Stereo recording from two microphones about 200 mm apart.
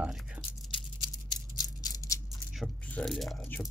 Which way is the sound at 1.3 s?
20° left (ahead or behind).